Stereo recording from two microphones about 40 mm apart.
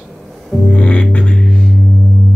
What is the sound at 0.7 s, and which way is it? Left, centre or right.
Music, left.